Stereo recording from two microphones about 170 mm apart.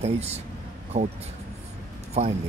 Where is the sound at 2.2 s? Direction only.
40° right (ahead or behind).